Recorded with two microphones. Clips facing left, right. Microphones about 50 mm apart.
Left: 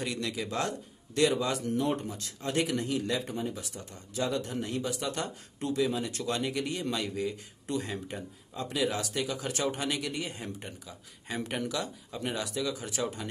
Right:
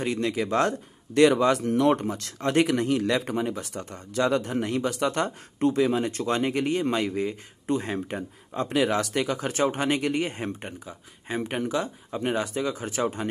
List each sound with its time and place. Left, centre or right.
0.0 s speech: right
11.2 s speech: right